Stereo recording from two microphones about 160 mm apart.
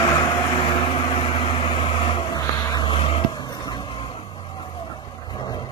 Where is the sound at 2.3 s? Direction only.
25° left (ahead or behind).